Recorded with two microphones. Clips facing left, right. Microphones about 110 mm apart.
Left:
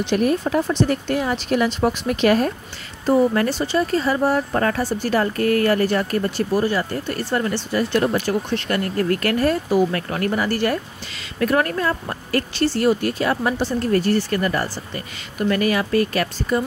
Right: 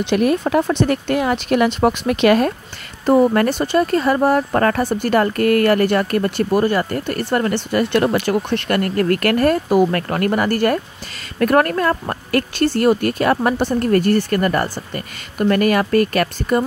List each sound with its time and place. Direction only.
0.0 s speech: 75° right (ahead or behind)
3.1 s speech: 60° right (ahead or behind)